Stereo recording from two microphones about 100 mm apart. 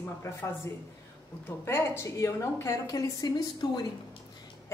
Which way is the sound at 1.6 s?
25° left (ahead or behind).